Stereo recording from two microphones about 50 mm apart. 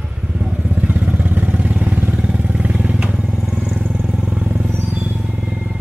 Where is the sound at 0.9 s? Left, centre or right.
Right.